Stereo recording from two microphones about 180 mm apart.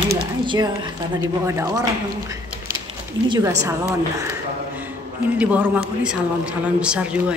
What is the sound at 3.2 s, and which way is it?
Speech, 25° right (ahead or behind).